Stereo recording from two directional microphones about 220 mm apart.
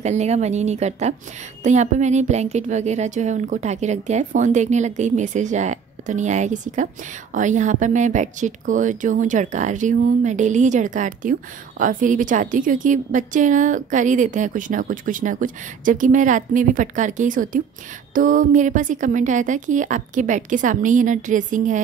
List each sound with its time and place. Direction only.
0.0 s a woman's voice: 30° right (ahead or behind)